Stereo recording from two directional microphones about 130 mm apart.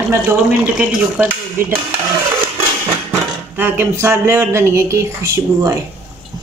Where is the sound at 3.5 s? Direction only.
15° right (ahead or behind).